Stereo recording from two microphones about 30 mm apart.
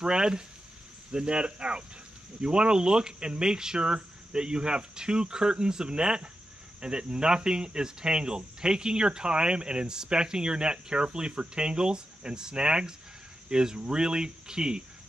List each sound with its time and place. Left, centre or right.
0.0 s speech: right